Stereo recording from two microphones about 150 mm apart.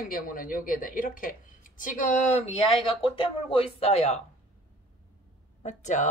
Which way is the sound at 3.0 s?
35° left (ahead or behind).